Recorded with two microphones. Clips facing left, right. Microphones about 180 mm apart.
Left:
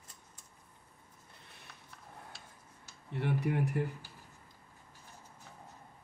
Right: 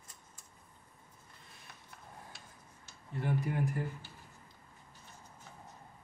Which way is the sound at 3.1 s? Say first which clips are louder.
Left 2 dB; 70° left (ahead or behind).